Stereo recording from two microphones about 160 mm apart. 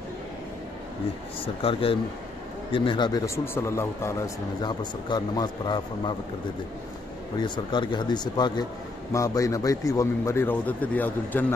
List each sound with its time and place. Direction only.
1.4 s a man's voice: 35° left (ahead or behind)
7.3 s a man's voice: 30° left (ahead or behind); by 11.4 s 10° left (ahead or behind)